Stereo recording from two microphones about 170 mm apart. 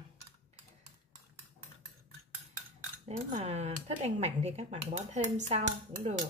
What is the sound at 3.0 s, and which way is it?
Speech, 40° right (ahead or behind).